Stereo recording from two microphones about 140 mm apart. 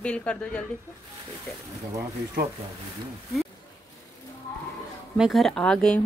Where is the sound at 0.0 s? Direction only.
10° left (ahead or behind).